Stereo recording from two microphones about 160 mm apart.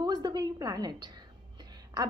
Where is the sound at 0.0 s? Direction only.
25° right (ahead or behind).